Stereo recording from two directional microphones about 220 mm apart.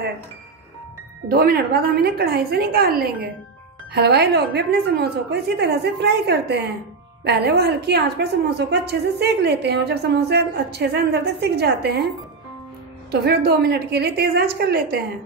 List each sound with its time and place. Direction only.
1.3 s a woman's voice: 45° right (ahead or behind)
13.1 s a woman's voice: 50° right (ahead or behind)